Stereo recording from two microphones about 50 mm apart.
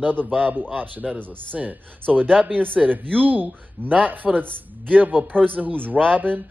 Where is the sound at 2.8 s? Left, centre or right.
Right.